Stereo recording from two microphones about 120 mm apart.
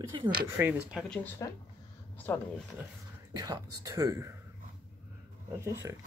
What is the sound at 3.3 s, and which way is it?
Speech, 30° right (ahead or behind).